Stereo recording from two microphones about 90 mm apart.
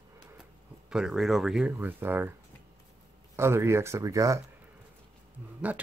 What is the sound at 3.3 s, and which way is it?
Speech, 30° right (ahead or behind).